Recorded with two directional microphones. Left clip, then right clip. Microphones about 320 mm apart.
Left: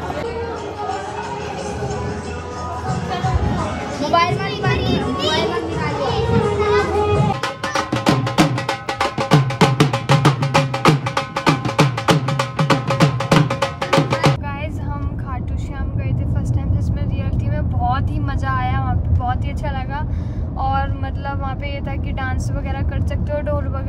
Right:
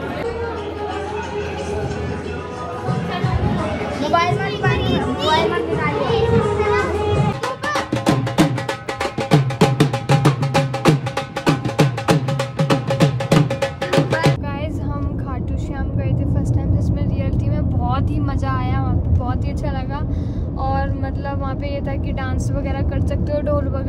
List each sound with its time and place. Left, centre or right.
4.1 s children playing: centre
7.4 s music: centre